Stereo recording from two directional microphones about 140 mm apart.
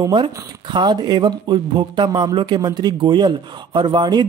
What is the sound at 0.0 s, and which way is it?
Speech, 30° right (ahead or behind).